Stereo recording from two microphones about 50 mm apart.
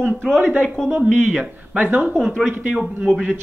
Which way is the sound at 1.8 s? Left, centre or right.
Right.